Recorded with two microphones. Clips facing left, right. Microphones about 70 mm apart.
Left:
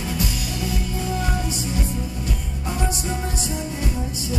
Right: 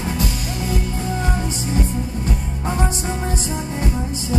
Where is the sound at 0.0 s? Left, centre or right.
Right.